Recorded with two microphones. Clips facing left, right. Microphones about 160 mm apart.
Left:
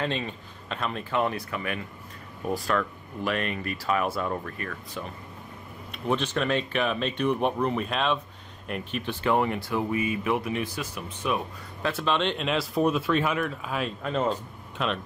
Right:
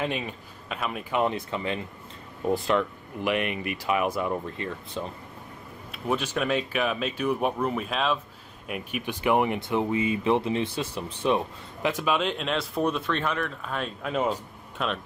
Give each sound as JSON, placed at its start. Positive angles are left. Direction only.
{"t": 0.0, "sound": "speech", "side_deg": -10}
{"t": 5.9, "sound": "speech", "side_deg": -5}
{"t": 11.8, "sound": "speech", "side_deg": -15}